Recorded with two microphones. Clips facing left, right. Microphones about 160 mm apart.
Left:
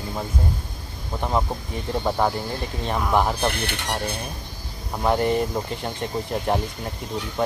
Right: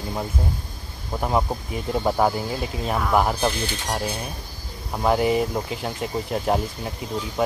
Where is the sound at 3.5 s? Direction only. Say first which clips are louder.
Even; 65° left (ahead or behind).